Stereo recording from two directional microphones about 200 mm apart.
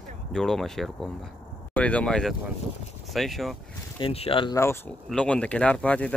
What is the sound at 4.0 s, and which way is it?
Speech, 30° left (ahead or behind).